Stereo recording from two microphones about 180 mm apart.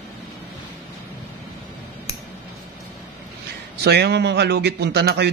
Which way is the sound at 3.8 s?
65° right (ahead or behind).